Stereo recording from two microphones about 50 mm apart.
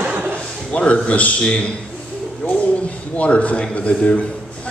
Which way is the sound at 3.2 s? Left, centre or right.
Left.